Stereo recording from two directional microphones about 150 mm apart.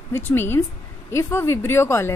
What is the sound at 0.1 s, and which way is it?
A woman's voice, 15° left (ahead or behind).